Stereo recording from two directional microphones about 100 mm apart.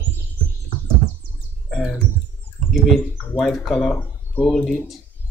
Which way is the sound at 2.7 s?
Centre (ahead or behind).